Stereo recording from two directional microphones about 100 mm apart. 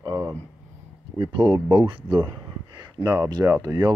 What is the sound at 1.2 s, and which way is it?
Speech, 50° right (ahead or behind).